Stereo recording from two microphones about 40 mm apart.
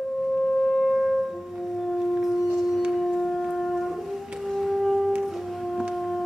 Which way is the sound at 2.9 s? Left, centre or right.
Centre.